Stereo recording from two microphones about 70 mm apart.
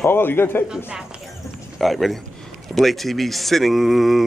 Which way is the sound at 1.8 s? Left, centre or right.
Centre.